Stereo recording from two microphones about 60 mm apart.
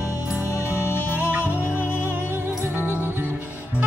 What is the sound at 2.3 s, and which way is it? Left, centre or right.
Music, right.